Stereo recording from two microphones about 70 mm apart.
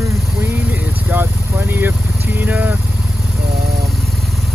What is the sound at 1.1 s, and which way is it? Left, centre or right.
Speech, right.